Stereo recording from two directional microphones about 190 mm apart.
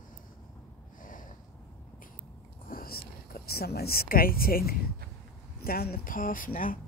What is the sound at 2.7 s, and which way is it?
Whispering, 50° left (ahead or behind).